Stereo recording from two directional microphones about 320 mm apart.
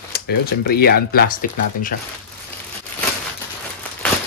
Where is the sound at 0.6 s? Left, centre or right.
Left.